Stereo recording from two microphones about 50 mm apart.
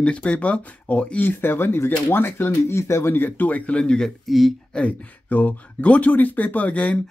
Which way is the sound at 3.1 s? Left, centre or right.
Left.